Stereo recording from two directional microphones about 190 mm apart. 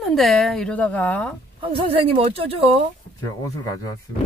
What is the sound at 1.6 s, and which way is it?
A woman's voice, 30° right (ahead or behind).